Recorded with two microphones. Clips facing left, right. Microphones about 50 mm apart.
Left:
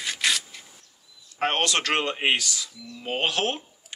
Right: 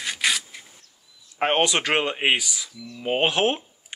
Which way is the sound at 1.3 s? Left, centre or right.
Centre.